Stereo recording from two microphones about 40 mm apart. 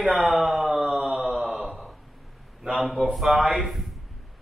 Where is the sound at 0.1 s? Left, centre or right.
Centre.